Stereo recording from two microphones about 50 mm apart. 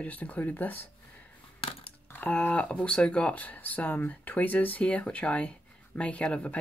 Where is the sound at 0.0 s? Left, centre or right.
Left.